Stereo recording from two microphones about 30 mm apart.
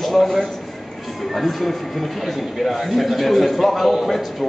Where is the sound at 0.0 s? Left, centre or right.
Centre.